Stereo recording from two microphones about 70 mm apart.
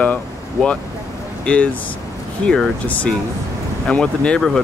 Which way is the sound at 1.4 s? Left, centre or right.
Centre.